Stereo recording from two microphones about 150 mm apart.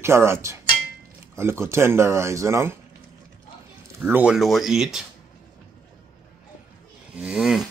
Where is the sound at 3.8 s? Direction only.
10° right (ahead or behind).